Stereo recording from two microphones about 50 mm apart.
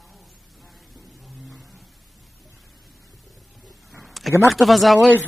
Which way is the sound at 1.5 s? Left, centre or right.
Centre.